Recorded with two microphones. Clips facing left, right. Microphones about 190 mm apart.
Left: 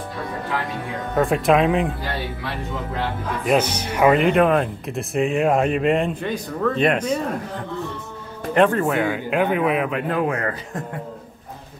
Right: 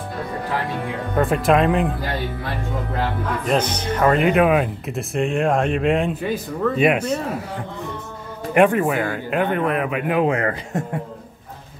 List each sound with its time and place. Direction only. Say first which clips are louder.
1.1 s speech: even; centre (ahead or behind)
3.4 s speech: left 2 dB; 10° left (ahead or behind)
4.2 s speech: even; 5° right (ahead or behind)
8.5 s speech: right 1 dB; 10° right (ahead or behind)
10.1 s a man's voice: right 6 dB; 20° right (ahead or behind)